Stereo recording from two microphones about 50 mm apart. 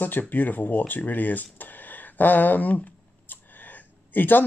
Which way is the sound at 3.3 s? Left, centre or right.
Left.